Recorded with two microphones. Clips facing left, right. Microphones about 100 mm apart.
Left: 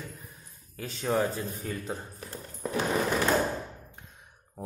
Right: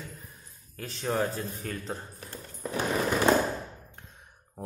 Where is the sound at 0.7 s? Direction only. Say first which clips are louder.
Left 1 dB; 5° left (ahead or behind).